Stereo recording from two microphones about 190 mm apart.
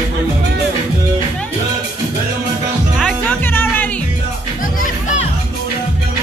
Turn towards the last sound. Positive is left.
turn(degrees=40)  # may be behind; listen again after turning